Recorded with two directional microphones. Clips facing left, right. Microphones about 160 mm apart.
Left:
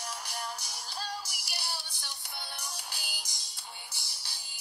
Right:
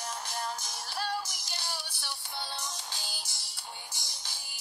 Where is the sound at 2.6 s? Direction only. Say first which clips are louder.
Right 3 dB; 20° right (ahead or behind).